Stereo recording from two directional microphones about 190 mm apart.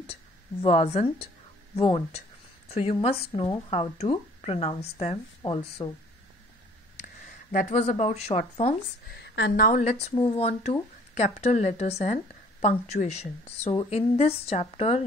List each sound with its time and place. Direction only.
0.0 s speech: 30° left (ahead or behind)
7.5 s speech: 35° left (ahead or behind)
9.1 s a woman's voice: 65° left (ahead or behind)
9.6 s speech: 45° left (ahead or behind)